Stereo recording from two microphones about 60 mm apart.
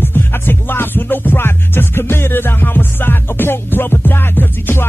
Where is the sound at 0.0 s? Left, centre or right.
Left.